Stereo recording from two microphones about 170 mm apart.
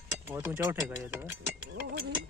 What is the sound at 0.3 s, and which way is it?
Speech, 15° right (ahead or behind).